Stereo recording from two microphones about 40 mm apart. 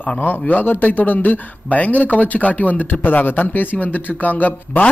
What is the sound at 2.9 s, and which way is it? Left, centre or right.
A man's voice, left.